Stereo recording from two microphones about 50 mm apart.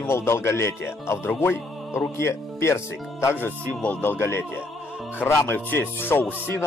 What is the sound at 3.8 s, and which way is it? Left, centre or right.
Speech, left.